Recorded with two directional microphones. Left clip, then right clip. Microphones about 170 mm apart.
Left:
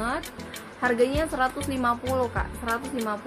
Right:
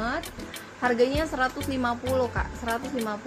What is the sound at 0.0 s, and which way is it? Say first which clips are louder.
Music: left 1 dB; 5° left (ahead or behind).